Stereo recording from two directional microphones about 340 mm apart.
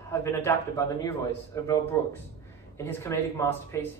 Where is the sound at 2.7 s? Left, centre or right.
Centre.